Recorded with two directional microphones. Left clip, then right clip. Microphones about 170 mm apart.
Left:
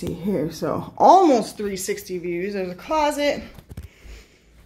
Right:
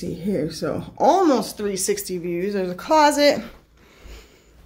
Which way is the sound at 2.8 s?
25° right (ahead or behind).